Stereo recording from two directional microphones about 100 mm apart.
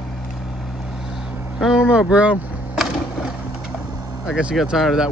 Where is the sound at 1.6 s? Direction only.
10° right (ahead or behind).